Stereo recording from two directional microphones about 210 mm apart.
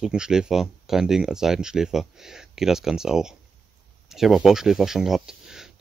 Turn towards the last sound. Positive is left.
turn(degrees=0)  # may be behind; listen again after turning